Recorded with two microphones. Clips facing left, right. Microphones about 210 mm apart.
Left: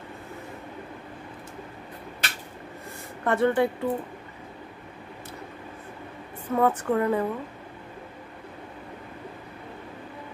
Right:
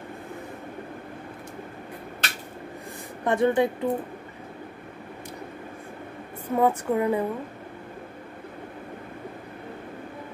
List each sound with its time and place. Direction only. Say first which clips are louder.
3.3 s speech: right 1 dB; 15° right (ahead or behind)
6.5 s speech: even; 10° right (ahead or behind)